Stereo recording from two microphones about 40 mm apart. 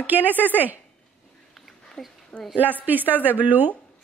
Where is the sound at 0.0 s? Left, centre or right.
Right.